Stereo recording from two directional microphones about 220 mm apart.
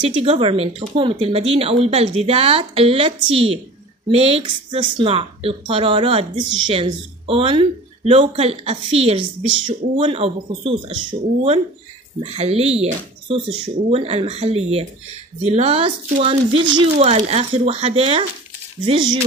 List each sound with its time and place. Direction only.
0.0 s a woman's voice: 25° right (ahead or behind)